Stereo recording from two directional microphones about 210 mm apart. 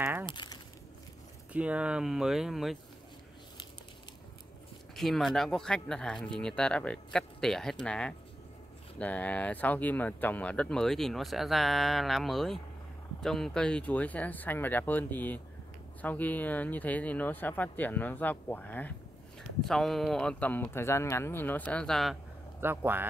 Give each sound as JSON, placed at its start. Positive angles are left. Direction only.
{"t": 0.0, "sound": "crumpling", "side_deg": -10}
{"t": 0.3, "sound": "crumpling", "side_deg": 20}
{"t": 1.5, "sound": "speech", "side_deg": -5}
{"t": 4.9, "sound": "speech", "side_deg": 0}
{"t": 22.6, "sound": "speech", "side_deg": -10}